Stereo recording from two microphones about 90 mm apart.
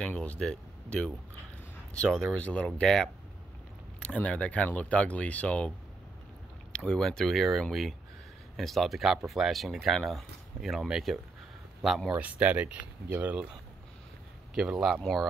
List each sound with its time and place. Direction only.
0.0 s speech: 15° left (ahead or behind)
6.7 s speech: 10° left (ahead or behind)
12.1 s speech: 15° right (ahead or behind)
14.5 s speech: 5° right (ahead or behind)